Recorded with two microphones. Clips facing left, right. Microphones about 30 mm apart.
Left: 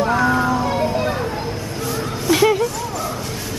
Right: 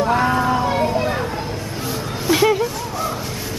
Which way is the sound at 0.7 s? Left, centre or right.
Centre.